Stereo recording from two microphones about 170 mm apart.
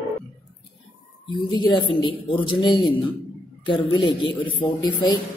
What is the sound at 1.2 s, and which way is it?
A woman's voice, 25° left (ahead or behind).